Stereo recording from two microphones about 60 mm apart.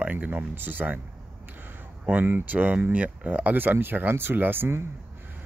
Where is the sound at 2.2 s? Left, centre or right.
Right.